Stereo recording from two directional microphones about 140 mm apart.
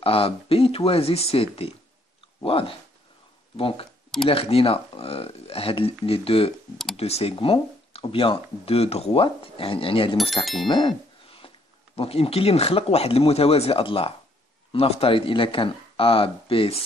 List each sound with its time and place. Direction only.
0.0 s speech: 40° left (ahead or behind)